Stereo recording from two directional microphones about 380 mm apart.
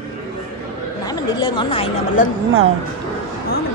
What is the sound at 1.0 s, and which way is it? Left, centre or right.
Speech, centre.